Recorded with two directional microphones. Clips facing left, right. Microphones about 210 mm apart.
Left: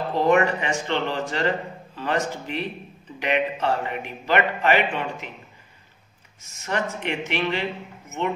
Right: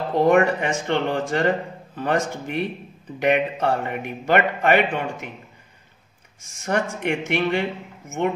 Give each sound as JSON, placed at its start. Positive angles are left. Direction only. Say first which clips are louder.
{"t": 0.2, "sound": "a man's voice", "louder": "right 3 dB", "side_deg": -55}
{"t": 6.6, "sound": "a man's voice", "louder": "right 3 dB", "side_deg": -50}